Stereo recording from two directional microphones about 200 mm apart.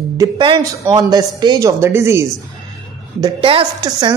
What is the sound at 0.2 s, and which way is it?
A woman's voice, 25° right (ahead or behind).